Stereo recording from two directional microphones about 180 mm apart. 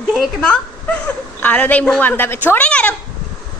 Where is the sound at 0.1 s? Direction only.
5° left (ahead or behind).